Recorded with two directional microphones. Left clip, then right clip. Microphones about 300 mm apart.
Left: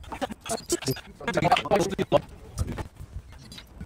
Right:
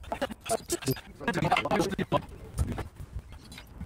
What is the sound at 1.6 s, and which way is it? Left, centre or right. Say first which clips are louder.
Speech: left 4 dB; centre.